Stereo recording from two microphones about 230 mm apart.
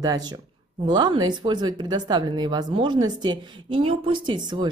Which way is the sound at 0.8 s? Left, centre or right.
Centre.